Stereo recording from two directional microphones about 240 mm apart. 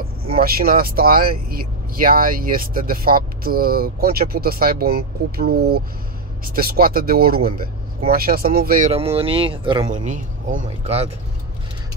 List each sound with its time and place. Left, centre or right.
0.4 s speech: right